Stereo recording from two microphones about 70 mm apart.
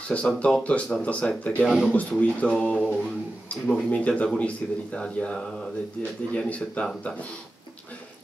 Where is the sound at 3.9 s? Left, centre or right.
Centre.